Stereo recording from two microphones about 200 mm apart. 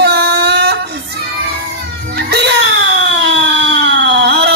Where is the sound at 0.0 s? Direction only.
55° right (ahead or behind).